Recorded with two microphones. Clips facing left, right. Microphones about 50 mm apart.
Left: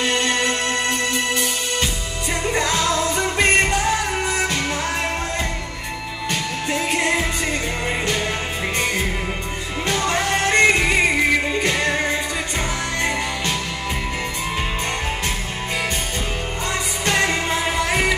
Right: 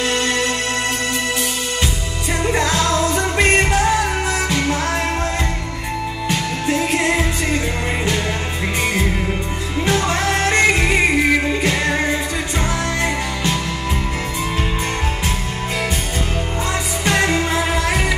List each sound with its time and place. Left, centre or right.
0.0 s music: centre
2.6 s music: centre
3.0 s music: centre
6.2 s music: centre
9.8 s music: centre
17.0 s music: centre